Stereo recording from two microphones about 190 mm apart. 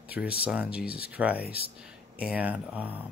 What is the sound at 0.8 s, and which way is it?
Speech, 55° left (ahead or behind).